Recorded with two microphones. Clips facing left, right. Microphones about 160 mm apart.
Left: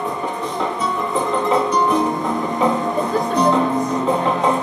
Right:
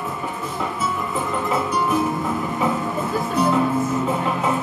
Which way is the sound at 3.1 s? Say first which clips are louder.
Left 2 dB; 5° right (ahead or behind).